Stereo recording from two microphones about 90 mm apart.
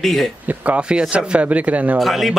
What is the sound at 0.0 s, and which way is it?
Speech, 5° left (ahead or behind).